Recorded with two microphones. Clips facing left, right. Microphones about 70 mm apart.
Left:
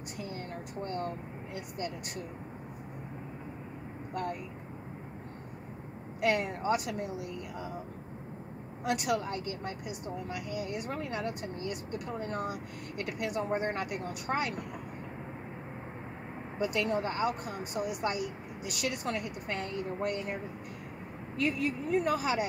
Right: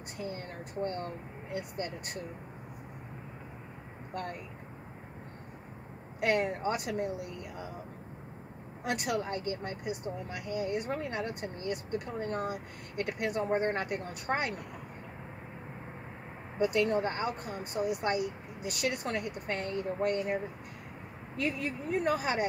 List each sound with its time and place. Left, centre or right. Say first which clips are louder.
6.2 s speech: even; right
8.9 s speech: left 1 dB; right
16.5 s speech: right 3 dB; right
21.4 s speech: left 3 dB; right